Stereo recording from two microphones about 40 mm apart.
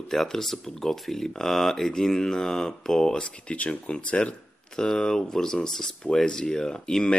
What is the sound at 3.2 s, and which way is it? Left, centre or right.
Speech, left.